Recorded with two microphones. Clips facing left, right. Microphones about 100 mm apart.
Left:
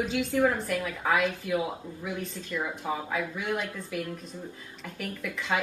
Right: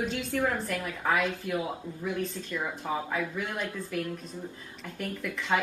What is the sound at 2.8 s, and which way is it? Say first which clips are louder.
Speech: right 1 dB; 5° left (ahead or behind).